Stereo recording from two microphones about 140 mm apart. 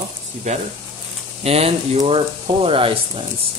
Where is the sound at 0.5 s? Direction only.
55° right (ahead or behind).